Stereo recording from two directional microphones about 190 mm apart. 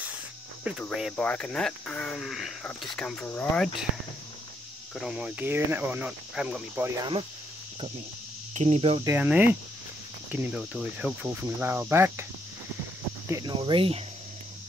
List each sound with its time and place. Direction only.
0.7 s speech: centre (ahead or behind)
4.9 s cricket: 5° right (ahead or behind)
8.5 s cricket: 35° right (ahead or behind)
9.0 s cricket: 10° right (ahead or behind)
13.3 s speech: 20° right (ahead or behind)